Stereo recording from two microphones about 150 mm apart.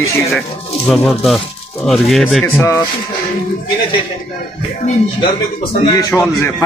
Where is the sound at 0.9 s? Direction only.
Centre (ahead or behind).